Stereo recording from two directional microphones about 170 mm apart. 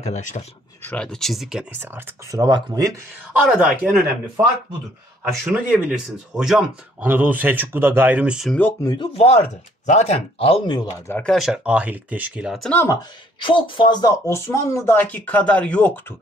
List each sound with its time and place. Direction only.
0.0 s speech: 45° left (ahead or behind)
0.8 s speech: 5° left (ahead or behind); by 2.4 s 15° right (ahead or behind)
2.4 s speech: 25° right (ahead or behind)
3.3 s speech: 5° right (ahead or behind)
5.3 s speech: 10° right (ahead or behind)
8.8 s speech: 25° left (ahead or behind)
11.1 s speech: centre (ahead or behind)
12.6 s speech: 10° left (ahead or behind)
12.9 s speech: 30° left (ahead or behind); by 16.2 s 10° left (ahead or behind)